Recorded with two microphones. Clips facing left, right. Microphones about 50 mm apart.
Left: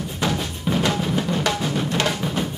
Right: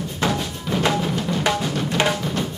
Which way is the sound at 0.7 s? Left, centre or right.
Centre.